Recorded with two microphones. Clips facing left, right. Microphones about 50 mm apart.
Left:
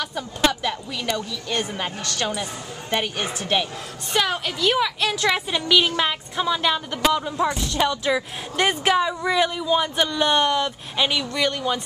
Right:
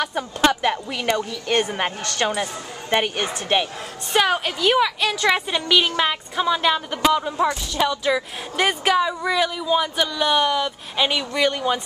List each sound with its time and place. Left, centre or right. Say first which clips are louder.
0.5 s a woman's voice: right 5 dB; right; by 11.8 s centre